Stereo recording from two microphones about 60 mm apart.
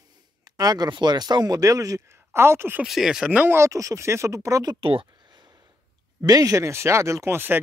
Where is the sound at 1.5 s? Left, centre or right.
Right.